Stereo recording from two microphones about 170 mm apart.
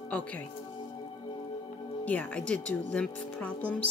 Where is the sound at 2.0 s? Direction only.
10° left (ahead or behind).